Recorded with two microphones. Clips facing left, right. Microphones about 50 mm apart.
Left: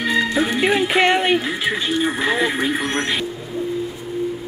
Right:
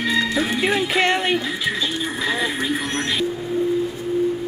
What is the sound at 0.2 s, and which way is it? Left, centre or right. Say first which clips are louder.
Speech: left 2 dB; centre.